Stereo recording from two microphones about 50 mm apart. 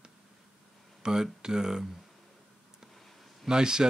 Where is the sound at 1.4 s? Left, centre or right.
Centre.